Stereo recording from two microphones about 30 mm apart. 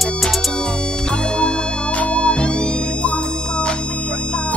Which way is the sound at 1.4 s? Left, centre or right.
Left.